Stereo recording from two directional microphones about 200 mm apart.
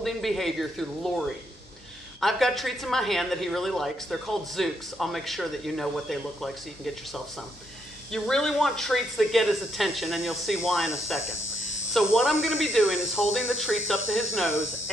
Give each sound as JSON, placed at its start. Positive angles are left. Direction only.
{"t": 0.0, "sound": "speech", "side_deg": 0}